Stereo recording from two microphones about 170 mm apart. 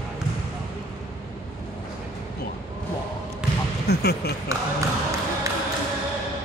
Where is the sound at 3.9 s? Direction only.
75° left (ahead or behind).